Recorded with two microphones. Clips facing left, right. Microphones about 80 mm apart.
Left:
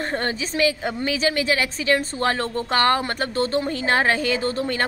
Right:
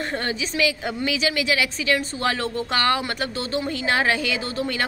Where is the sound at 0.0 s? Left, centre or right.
Left.